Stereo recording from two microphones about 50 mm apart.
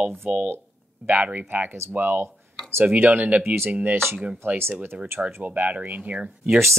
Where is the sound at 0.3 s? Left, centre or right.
Right.